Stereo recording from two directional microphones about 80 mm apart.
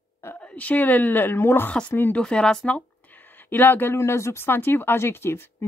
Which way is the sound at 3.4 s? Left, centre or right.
Left.